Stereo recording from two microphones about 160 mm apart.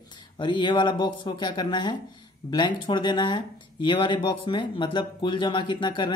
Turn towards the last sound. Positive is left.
turn(degrees=30)  # may be behind; listen again after turning